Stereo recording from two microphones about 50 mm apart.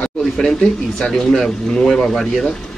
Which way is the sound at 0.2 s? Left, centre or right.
Centre.